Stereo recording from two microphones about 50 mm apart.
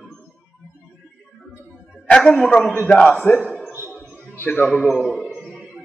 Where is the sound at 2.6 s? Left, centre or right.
Left.